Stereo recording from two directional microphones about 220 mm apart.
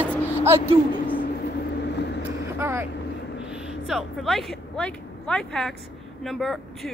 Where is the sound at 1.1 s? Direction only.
40° left (ahead or behind).